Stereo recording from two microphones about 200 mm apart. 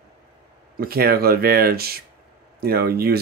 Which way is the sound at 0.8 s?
50° right (ahead or behind).